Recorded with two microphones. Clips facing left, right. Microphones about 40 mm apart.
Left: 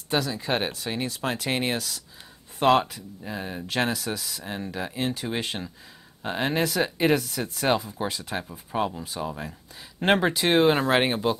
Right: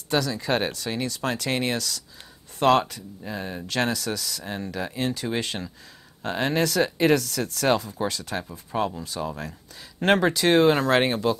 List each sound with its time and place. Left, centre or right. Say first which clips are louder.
0.1 s speech: right 2 dB; centre